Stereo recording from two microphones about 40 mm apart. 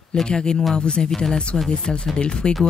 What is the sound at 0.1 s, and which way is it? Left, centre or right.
Speech, left.